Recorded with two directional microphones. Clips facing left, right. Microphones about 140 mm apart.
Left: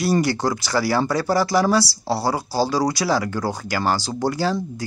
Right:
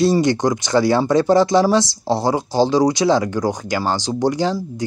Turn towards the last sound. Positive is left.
turn(degrees=-20)  # may be behind; listen again after turning